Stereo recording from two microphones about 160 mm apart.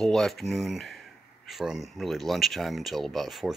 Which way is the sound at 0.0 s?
Centre (ahead or behind).